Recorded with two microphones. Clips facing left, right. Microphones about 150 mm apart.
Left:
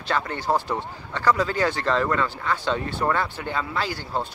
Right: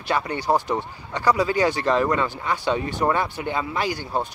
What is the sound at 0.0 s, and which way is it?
Speech, 15° right (ahead or behind).